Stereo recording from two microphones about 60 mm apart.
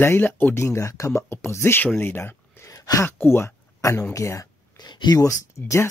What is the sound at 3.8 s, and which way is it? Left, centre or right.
Speech, left.